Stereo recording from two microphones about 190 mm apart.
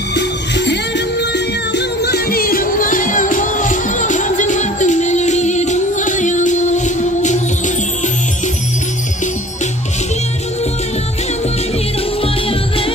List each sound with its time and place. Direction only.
0.1 s music: 65° left (ahead or behind); by 7.7 s 40° left (ahead or behind)
12.2 s music: 30° left (ahead or behind)